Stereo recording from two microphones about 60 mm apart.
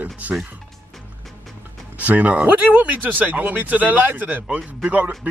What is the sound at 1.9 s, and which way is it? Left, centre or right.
Speech, right.